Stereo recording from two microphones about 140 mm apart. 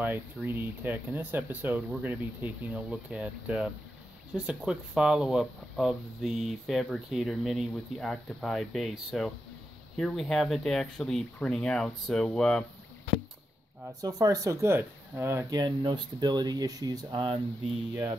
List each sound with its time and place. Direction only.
0.0 s speech: 15° right (ahead or behind); by 12.6 s 5° left (ahead or behind)
14.0 s speech: 25° right (ahead or behind)
15.5 s speech: 35° right (ahead or behind)